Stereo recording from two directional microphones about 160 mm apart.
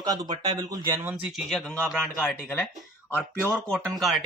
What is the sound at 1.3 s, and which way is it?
Speech, centre (ahead or behind).